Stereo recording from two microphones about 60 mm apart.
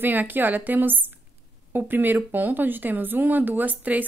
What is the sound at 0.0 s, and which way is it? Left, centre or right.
A woman's voice, right.